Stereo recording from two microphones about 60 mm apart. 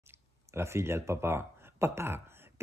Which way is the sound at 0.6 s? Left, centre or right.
Right.